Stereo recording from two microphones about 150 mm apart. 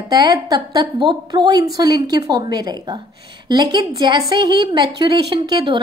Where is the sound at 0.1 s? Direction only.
25° right (ahead or behind).